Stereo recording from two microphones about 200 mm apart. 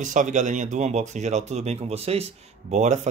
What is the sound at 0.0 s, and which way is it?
Speech, 40° right (ahead or behind).